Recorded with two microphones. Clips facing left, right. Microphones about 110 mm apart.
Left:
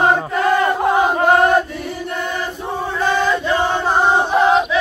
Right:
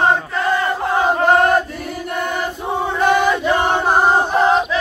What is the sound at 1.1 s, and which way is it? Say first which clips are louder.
Chant: right 2 dB; centre (ahead or behind).